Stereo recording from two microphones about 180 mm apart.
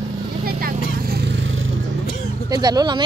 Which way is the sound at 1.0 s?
65° right (ahead or behind).